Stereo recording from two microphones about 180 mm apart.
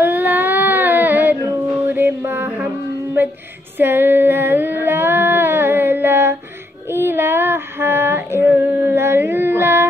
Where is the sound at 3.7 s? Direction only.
10° right (ahead or behind).